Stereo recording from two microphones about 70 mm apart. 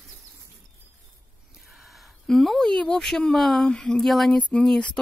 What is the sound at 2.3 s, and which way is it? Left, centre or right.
Speech, centre.